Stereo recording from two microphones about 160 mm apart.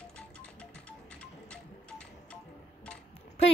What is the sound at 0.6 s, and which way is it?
Music, 5° left (ahead or behind).